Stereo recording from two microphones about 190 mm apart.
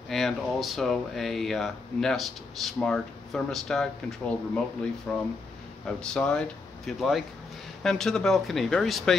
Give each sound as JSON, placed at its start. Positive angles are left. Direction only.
{"t": 0.1, "sound": "speech", "side_deg": 0}